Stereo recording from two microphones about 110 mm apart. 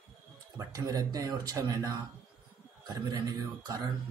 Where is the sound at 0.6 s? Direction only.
35° right (ahead or behind).